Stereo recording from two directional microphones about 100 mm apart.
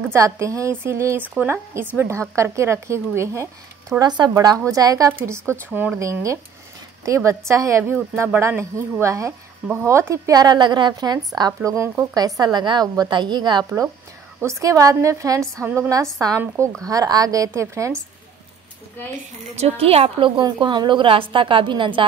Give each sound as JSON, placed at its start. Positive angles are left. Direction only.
{"t": 0.1, "sound": "a woman's voice", "side_deg": -30}
{"t": 4.0, "sound": "speech", "side_deg": -45}
{"t": 5.1, "sound": "a woman's voice", "side_deg": -25}
{"t": 5.7, "sound": "speech", "side_deg": -15}
{"t": 5.9, "sound": "a woman's voice", "side_deg": -30}
{"t": 14.4, "sound": "speech", "side_deg": -30}
{"t": 15.6, "sound": "a woman's voice", "side_deg": -20}
{"t": 19.5, "sound": "a woman's voice", "side_deg": -90}